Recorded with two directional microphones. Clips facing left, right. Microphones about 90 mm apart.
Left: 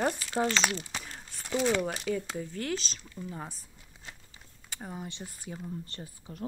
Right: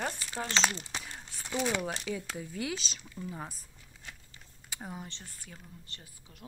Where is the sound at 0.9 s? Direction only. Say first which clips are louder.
Left 1 dB; 5° right (ahead or behind).